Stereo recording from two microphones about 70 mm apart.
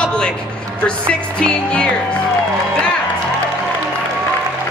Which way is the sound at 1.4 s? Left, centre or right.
Centre.